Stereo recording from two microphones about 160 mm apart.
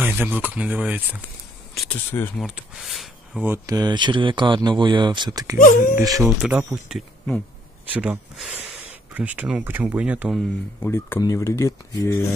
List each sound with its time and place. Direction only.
0.0 s speech: 10° right (ahead or behind)
1.9 s speech: 10° left (ahead or behind)
2.4 s speech: 5° right (ahead or behind)
3.4 s speech: 20° right (ahead or behind)
6.7 s speech: centre (ahead or behind)
10.8 s speech: 15° left (ahead or behind)